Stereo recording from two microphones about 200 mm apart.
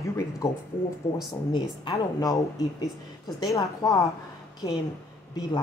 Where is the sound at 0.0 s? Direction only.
15° left (ahead or behind).